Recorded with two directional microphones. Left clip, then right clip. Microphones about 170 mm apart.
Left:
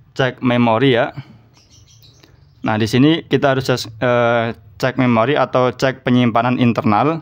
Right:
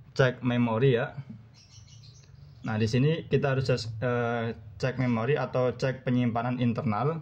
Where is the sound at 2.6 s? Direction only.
50° left (ahead or behind).